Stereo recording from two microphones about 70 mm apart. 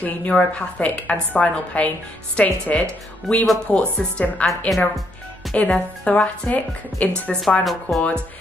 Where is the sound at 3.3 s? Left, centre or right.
Centre.